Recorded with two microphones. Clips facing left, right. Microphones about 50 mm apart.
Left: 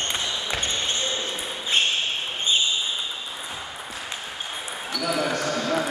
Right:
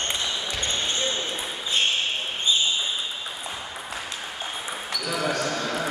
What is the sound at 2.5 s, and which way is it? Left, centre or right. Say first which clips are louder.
Basketball bounce: even; left.